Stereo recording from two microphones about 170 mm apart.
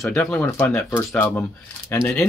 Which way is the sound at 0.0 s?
5° left (ahead or behind).